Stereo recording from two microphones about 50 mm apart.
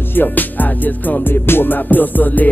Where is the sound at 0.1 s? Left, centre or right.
Left.